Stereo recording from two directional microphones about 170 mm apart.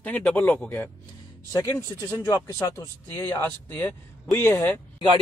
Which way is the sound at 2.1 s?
20° left (ahead or behind).